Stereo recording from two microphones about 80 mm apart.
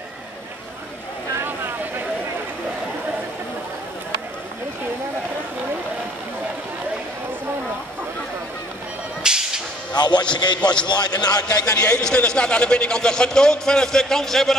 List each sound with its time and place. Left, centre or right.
1.4 s vehicle: right
9.2 s whip: centre
9.9 s a sound: left
10.3 s a man's voice: left
10.6 s a man's voice: centre
10.9 s a man's voice: left
11.6 s a man's voice: centre